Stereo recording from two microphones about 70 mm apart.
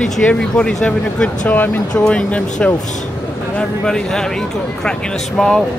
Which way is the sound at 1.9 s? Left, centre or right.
Centre.